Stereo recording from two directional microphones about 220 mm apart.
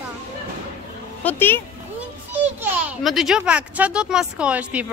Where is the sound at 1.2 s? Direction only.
10° left (ahead or behind).